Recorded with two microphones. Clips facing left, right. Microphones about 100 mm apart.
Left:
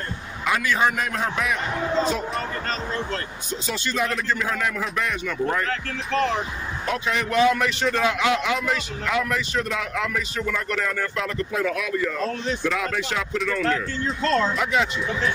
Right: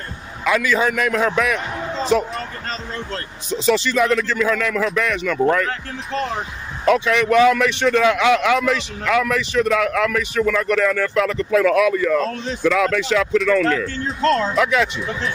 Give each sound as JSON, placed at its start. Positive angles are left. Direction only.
{"t": 0.9, "sound": "speech", "side_deg": -90}
{"t": 3.6, "sound": "speech", "side_deg": -90}
{"t": 7.1, "sound": "speech", "side_deg": -80}
{"t": 12.6, "sound": "speech", "side_deg": -90}